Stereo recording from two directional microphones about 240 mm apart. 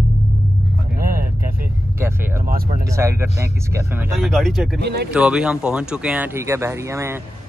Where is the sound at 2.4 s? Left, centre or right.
Right.